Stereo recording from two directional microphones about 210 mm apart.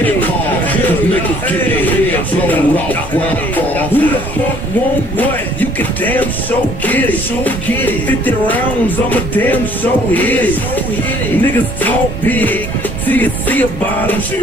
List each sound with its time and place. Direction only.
0.0 s music: 10° left (ahead or behind)
5.1 s music: 10° left (ahead or behind)